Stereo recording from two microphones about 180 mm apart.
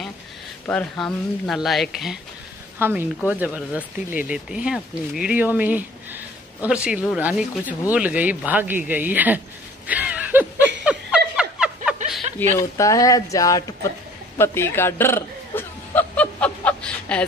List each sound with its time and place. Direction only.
0.7 s speech: 5° left (ahead or behind)
2.8 s speech: 10° right (ahead or behind)
9.8 s snicker: 10° right (ahead or behind)
12.4 s speech: 15° left (ahead or behind)
14.4 s burping: 15° left (ahead or behind)